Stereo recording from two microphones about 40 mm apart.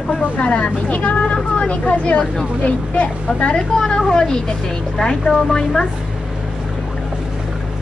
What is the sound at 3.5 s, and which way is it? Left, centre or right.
A woman's voice, centre.